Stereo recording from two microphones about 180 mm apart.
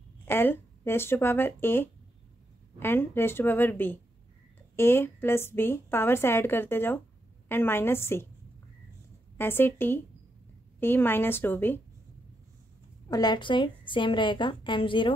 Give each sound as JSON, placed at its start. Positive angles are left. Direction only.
{"t": 0.2, "sound": "a woman's voice", "side_deg": 10}
{"t": 9.4, "sound": "a woman's voice", "side_deg": 10}
{"t": 13.1, "sound": "a woman's voice", "side_deg": 25}